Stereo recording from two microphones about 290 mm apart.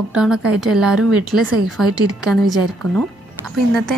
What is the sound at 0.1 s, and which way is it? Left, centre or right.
A woman's voice, centre.